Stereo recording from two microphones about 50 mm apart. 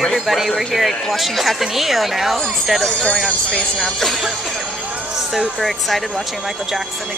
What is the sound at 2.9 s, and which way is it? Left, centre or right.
Speech, centre.